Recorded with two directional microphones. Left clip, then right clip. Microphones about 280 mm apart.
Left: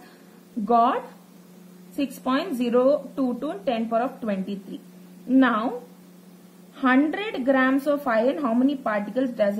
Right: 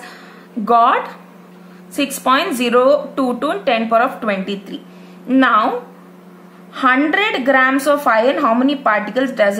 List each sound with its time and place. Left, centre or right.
0.7 s a woman's voice: centre
2.2 s a woman's voice: centre
6.7 s a woman's voice: centre